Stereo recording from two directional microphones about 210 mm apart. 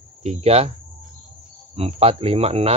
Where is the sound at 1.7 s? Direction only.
30° right (ahead or behind).